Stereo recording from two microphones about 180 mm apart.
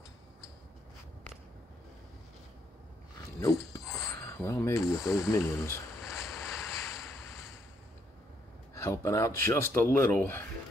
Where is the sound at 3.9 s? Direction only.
15° left (ahead or behind).